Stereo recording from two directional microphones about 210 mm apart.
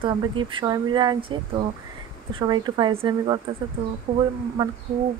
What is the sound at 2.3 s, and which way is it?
Speech, 20° right (ahead or behind).